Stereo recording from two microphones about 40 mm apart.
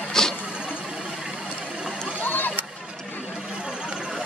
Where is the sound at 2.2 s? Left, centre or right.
Left.